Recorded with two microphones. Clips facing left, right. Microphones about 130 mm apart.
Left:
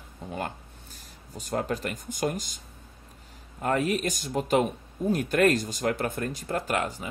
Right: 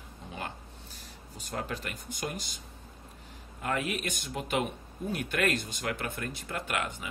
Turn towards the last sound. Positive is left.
turn(degrees=35)  # may be behind; listen again after turning